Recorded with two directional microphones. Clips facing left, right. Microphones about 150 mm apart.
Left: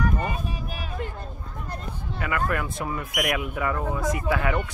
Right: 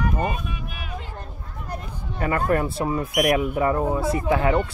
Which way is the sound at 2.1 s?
35° right (ahead or behind).